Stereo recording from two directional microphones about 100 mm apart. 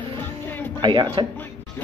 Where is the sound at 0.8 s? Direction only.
50° right (ahead or behind).